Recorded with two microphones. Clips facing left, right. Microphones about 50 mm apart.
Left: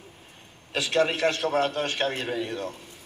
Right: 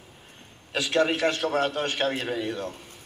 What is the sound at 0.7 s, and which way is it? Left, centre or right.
Speech, centre.